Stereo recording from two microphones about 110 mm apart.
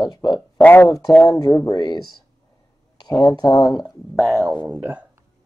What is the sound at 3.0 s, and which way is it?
Speech, 35° left (ahead or behind).